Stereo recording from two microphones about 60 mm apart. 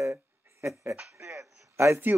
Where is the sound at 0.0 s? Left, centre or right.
Right.